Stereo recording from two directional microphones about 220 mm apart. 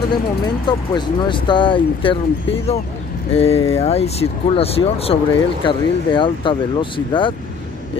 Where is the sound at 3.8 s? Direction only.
30° left (ahead or behind).